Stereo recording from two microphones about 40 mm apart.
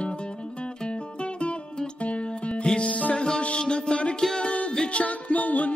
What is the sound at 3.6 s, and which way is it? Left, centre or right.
Music, left.